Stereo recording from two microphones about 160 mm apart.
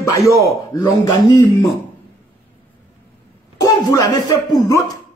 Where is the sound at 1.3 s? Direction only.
25° left (ahead or behind).